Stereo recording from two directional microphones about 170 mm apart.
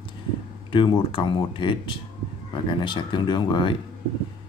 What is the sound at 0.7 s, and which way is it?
Speech, 30° left (ahead or behind).